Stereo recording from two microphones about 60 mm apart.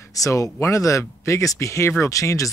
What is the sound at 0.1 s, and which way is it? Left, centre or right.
Speech, left.